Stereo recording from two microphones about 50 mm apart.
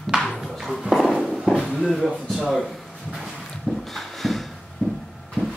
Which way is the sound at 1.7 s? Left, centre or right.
Centre.